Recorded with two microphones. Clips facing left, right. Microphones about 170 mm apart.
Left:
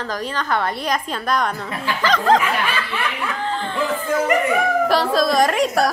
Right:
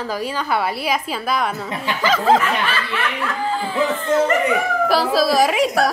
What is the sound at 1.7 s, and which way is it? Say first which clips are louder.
Speech: right 1 dB; 20° right (ahead or behind).